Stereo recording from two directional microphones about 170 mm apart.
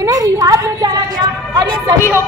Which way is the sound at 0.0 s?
20° right (ahead or behind).